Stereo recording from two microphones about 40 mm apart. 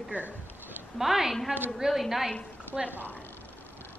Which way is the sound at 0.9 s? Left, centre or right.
Centre.